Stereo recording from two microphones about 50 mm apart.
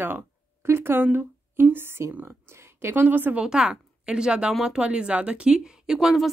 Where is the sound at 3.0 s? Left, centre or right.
Right.